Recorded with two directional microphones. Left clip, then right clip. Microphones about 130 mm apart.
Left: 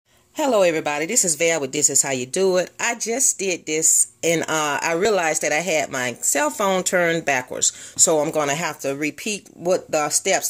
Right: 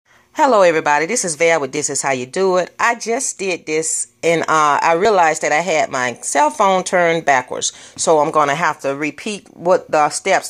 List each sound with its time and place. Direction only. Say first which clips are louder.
0.4 s speech: right 6 dB; 10° left (ahead or behind)
1.7 s a woman's voice: right 1 dB; 50° right (ahead or behind)
2.0 s speech: right 3 dB; 20° left (ahead or behind)